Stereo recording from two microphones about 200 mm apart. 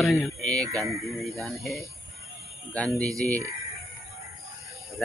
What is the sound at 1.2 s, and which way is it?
Speech, centre (ahead or behind).